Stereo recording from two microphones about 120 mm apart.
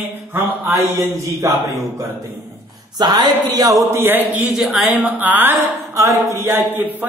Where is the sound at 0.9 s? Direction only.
25° right (ahead or behind).